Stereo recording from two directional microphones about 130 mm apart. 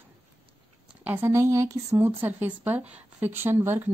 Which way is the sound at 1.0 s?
20° right (ahead or behind).